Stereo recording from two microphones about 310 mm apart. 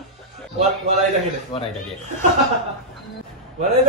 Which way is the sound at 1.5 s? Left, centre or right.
Centre.